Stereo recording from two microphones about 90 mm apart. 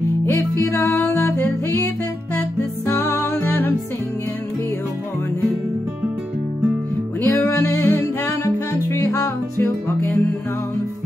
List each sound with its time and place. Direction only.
0.3 s music: 25° left (ahead or behind)
2.9 s music: 35° left (ahead or behind)
7.2 s music: 30° left (ahead or behind)
9.8 s music: 25° left (ahead or behind)